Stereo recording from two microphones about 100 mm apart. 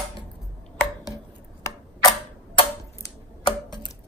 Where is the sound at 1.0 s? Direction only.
35° left (ahead or behind).